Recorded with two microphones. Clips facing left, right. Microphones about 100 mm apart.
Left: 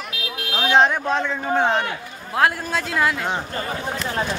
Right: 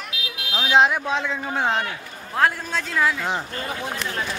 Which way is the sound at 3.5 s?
35° left (ahead or behind).